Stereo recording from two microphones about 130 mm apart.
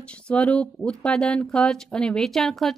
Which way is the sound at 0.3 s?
10° left (ahead or behind).